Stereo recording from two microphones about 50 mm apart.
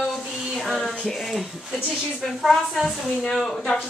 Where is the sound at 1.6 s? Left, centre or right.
Centre.